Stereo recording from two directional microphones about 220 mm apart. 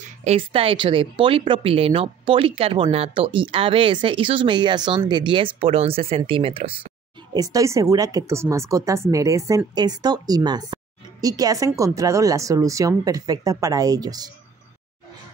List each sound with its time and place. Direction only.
0.2 s a woman's voice: 25° right (ahead or behind)